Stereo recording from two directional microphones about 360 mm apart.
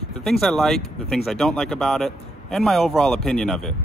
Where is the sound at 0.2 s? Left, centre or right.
Centre.